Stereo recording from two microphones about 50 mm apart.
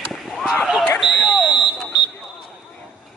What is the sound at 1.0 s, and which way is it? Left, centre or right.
Speech, centre.